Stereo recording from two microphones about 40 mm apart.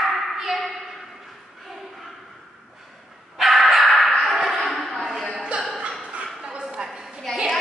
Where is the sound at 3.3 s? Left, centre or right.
Centre.